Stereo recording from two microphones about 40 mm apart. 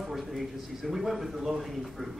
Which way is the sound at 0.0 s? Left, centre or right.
Centre.